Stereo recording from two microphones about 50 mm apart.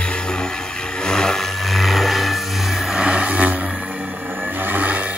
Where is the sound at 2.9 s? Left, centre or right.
Right.